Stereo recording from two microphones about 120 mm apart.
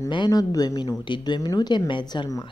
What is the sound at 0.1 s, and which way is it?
Speech, 35° left (ahead or behind).